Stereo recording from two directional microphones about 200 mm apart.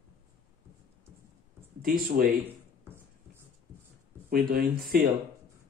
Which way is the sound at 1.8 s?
45° right (ahead or behind).